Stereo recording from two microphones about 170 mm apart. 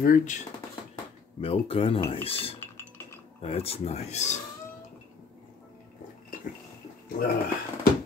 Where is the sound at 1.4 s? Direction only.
35° left (ahead or behind).